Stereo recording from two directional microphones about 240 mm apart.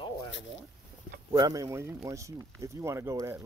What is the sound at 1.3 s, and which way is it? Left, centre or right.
Speech, centre.